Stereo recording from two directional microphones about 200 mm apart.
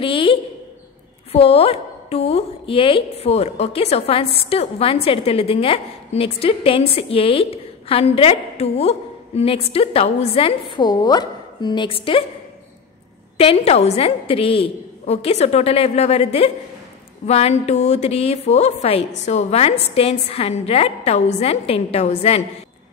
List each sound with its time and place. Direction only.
0.0 s a sound: 25° left (ahead or behind)
1.3 s a woman's voice: 30° left (ahead or behind)
13.4 s a woman's voice: 30° left (ahead or behind)